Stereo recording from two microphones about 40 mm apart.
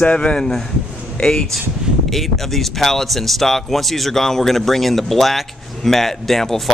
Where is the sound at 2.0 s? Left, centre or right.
Centre.